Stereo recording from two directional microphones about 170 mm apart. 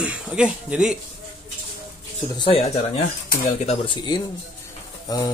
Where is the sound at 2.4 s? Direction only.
35° left (ahead or behind).